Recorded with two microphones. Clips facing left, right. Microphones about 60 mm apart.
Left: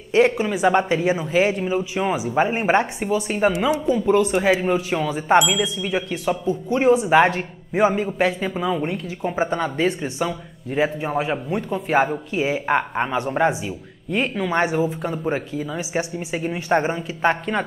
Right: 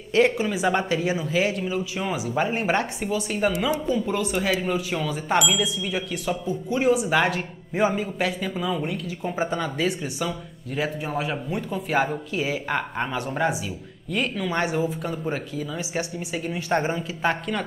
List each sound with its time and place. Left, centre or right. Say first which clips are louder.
0.1 s speech: left 3 dB; left